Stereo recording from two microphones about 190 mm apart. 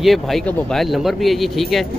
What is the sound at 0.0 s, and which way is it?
Speech, centre (ahead or behind).